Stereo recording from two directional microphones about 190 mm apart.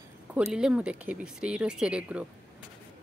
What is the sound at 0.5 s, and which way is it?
Speech, 5° right (ahead or behind).